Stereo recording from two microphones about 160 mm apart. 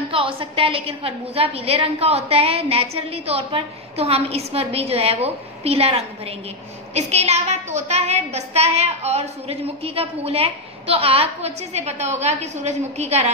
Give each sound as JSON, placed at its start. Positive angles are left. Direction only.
{"t": 0.1, "sound": "a woman's voice", "side_deg": -35}